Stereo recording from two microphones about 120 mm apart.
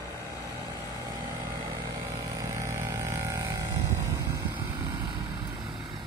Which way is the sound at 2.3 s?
25° right (ahead or behind).